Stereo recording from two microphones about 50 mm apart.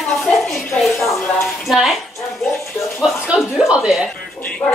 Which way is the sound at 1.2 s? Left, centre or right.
Centre.